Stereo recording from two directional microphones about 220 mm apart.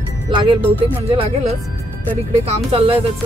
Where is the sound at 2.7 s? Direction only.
25° right (ahead or behind).